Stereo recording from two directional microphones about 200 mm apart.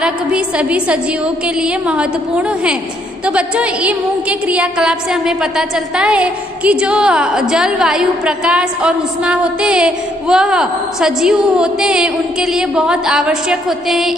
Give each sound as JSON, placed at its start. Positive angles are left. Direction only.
{"t": 0.0, "sound": "a woman's voice", "side_deg": -5}